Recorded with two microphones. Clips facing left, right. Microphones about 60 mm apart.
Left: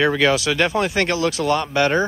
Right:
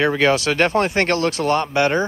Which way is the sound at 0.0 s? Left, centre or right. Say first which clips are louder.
Even; right.